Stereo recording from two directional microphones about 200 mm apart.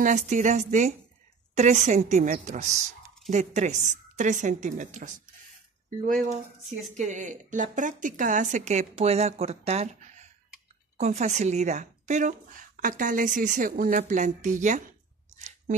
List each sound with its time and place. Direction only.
0.0 s a woman's voice: 40° right (ahead or behind)
7.0 s a woman's voice: 40° right (ahead or behind)